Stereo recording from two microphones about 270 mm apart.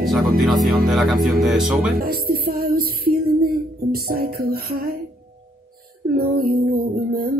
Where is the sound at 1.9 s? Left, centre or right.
Right.